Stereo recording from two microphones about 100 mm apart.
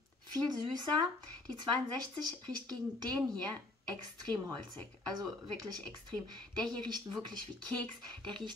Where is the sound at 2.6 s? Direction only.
40° right (ahead or behind).